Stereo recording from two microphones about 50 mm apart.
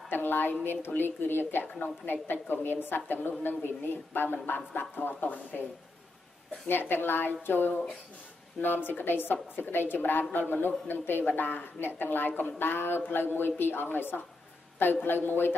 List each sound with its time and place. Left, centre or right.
0.1 s a woman's voice: left
6.7 s a woman's voice: left